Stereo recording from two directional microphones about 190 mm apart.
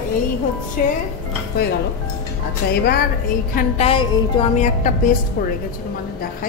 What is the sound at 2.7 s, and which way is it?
Speech, 55° left (ahead or behind).